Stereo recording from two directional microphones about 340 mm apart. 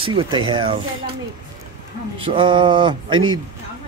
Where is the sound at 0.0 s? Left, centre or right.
Centre.